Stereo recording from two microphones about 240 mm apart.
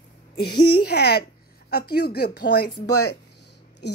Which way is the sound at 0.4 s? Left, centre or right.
Left.